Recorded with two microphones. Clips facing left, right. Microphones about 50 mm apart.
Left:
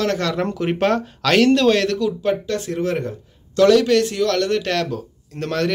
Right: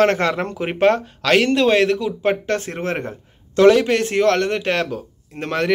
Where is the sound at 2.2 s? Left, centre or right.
Right.